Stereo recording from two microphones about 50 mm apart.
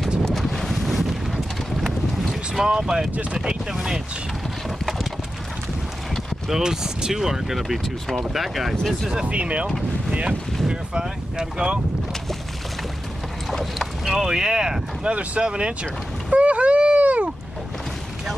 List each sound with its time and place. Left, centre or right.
0.2 s boat: centre
2.6 s speech: centre
4.6 s clip-clop: centre
6.5 s speech: centre
9.1 s speech: right
10.7 s speech: centre
13.5 s boat: centre
14.1 s speech: centre
15.4 s boat: right